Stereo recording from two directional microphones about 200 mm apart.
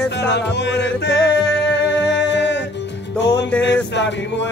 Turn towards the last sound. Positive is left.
turn(degrees=60)  # may be behind; listen again after turning